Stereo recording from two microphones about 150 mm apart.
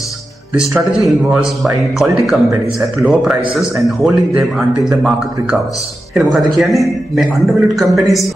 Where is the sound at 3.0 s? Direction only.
Centre (ahead or behind).